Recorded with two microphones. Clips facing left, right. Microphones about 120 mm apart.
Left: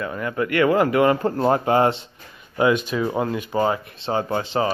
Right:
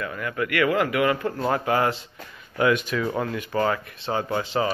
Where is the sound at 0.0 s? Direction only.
25° left (ahead or behind).